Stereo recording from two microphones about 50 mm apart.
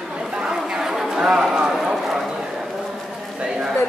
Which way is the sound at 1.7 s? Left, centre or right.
Centre.